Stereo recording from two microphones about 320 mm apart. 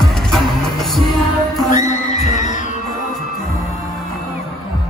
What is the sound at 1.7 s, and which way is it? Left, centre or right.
Music, left.